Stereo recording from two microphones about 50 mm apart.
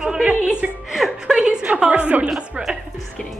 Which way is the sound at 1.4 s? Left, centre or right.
Centre.